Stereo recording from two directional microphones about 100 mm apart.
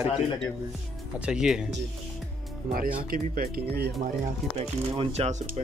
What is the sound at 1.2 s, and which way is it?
Speech, 10° right (ahead or behind).